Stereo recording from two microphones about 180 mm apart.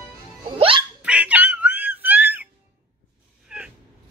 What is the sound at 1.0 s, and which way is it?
Music, 5° right (ahead or behind).